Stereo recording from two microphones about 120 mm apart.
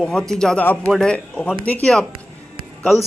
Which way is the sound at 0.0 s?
5° left (ahead or behind).